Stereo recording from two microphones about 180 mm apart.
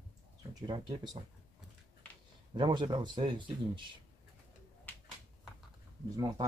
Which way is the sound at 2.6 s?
25° right (ahead or behind).